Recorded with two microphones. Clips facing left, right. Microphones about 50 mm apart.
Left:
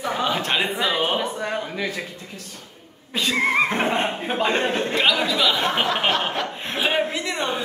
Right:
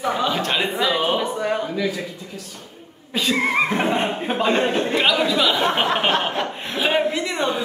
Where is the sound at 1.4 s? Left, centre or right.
Centre.